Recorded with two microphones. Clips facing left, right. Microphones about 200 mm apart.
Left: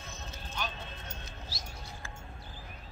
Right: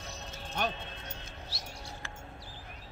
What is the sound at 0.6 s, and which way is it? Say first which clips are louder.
Music: right 6 dB; 60° right (ahead or behind).